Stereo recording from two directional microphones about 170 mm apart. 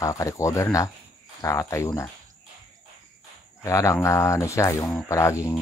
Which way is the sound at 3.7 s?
20° left (ahead or behind).